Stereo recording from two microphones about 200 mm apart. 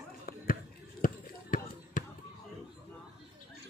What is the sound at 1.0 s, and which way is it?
Basketball bounce, 45° left (ahead or behind).